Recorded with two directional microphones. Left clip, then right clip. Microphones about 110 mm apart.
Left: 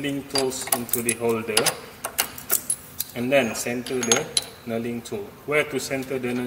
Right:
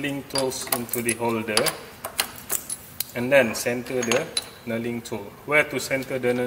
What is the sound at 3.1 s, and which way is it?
Speech, 75° right (ahead or behind).